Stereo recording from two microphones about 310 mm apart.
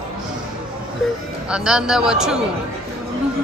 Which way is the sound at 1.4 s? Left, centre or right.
Centre.